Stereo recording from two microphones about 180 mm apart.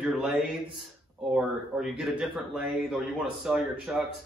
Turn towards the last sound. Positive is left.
turn(degrees=-5)  # may be behind; listen again after turning